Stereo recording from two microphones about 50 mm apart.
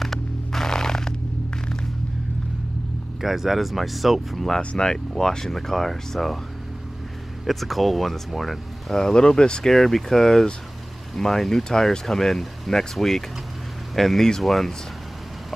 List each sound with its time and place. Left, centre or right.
0.0 s music: centre
3.2 s speech: centre
4.6 s speech: centre
7.4 s speech: centre
8.9 s speech: centre